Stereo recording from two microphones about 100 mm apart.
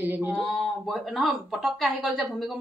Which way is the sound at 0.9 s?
Centre (ahead or behind).